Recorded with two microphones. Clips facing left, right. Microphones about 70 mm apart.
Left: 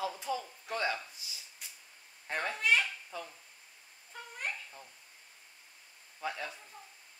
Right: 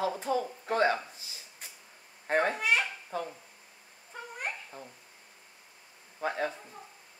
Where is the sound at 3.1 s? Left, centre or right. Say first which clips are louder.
Right 10 dB; right.